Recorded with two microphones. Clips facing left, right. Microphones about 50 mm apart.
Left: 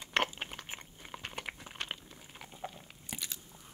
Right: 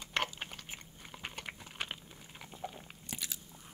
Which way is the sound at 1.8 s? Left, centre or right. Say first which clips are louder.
Even; centre.